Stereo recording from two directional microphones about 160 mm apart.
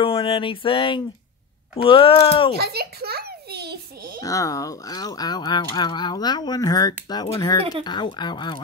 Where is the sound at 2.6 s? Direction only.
80° right; by 4.2 s 65° right (ahead or behind).